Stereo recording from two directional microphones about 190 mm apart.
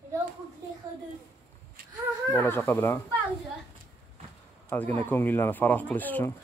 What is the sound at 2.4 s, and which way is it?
Speech, 10° left (ahead or behind).